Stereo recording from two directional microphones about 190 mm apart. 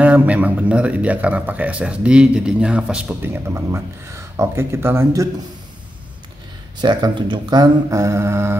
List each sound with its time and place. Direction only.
0.0 s speech: 10° right (ahead or behind)
6.8 s speech: 25° right (ahead or behind)